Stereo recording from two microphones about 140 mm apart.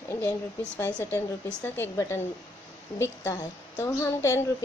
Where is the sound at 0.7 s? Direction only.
25° left (ahead or behind).